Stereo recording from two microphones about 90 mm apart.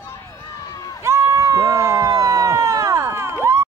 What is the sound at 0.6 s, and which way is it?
Run, 40° left (ahead or behind).